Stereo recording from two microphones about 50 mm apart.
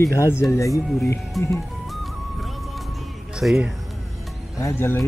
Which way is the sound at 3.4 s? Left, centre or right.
Right.